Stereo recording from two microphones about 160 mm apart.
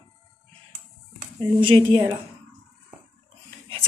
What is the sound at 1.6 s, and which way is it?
Speech, 30° right (ahead or behind).